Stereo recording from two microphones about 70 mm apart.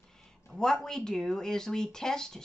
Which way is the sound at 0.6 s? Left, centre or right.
Centre.